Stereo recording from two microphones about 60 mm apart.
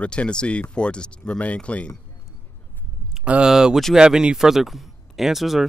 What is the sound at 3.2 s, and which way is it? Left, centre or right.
Speech, centre.